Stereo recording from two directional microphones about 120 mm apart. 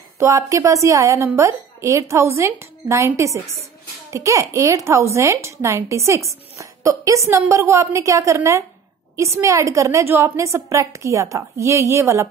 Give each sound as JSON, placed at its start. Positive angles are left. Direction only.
{"t": 0.2, "sound": "a child's voice", "side_deg": -25}